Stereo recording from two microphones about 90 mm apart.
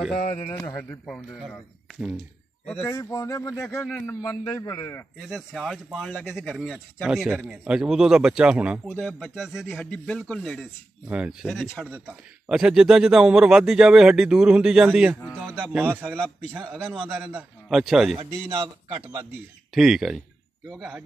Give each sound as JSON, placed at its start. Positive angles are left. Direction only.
{"t": 0.7, "sound": "speech", "side_deg": 20}
{"t": 1.0, "sound": "speech", "side_deg": 5}
{"t": 2.7, "sound": "speech", "side_deg": 25}
{"t": 3.0, "sound": "speech", "side_deg": 40}
{"t": 4.6, "sound": "speech", "side_deg": 45}
{"t": 5.3, "sound": "a man's voice", "side_deg": 0}
{"t": 9.0, "sound": "speech", "side_deg": 0}
{"t": 9.8, "sound": "a man's voice", "side_deg": 10}
{"t": 11.1, "sound": "a man's voice", "side_deg": -10}
{"t": 11.4, "sound": "speech", "side_deg": 0}
{"t": 11.9, "sound": "a man's voice", "side_deg": -10}
{"t": 17.6, "sound": "speech", "side_deg": -5}
{"t": 18.1, "sound": "a man's voice", "side_deg": -60}
{"t": 19.7, "sound": "speech", "side_deg": -5}